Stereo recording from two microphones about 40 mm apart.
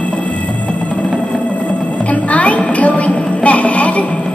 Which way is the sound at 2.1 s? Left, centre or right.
Left.